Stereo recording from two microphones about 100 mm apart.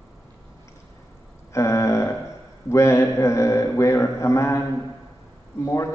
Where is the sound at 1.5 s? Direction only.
30° left (ahead or behind).